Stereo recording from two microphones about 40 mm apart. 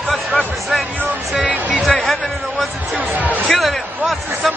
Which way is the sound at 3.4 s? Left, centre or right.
Centre.